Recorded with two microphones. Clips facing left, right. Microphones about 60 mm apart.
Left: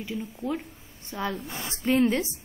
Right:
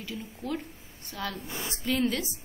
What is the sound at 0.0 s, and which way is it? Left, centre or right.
A woman's voice, left.